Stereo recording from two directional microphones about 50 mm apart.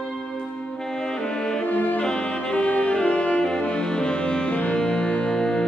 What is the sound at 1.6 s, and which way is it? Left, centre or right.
Saxophone, left.